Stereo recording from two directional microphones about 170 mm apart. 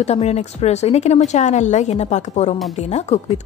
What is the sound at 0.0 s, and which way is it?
A woman's voice, 40° left (ahead or behind).